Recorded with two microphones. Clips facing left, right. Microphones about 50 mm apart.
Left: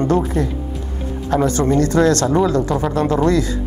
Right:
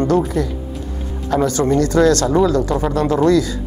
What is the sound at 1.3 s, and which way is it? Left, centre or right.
A woman's voice, left.